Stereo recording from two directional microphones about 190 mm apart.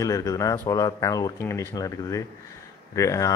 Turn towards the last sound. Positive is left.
turn(degrees=15)  # may be behind; listen again after turning